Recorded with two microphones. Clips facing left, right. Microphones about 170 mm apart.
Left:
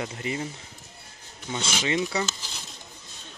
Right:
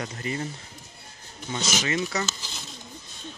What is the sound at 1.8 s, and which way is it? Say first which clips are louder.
Speech: left 5 dB; 20° left (ahead or behind).